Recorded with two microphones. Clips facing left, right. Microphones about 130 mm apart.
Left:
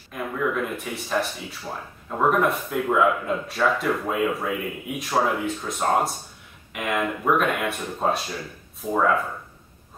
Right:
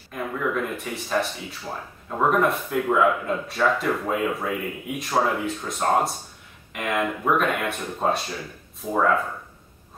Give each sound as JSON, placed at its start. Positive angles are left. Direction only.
{"t": 0.1, "sound": "speech", "side_deg": 0}